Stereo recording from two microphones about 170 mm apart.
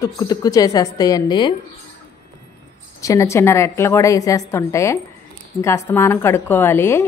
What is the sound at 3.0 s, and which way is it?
A woman's voice, 20° left (ahead or behind).